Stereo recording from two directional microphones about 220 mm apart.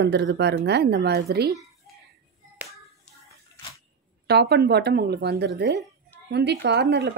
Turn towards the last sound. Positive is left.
turn(degrees=-50)  # may be behind; listen again after turning